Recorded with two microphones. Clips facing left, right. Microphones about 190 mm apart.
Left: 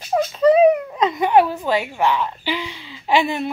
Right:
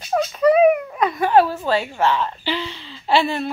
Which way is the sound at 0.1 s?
25° left (ahead or behind).